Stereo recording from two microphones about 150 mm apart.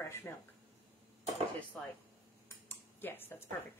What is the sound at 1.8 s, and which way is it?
A woman's voice, 10° left (ahead or behind).